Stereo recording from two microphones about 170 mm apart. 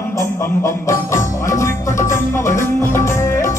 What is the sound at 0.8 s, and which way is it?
Music, 15° left (ahead or behind).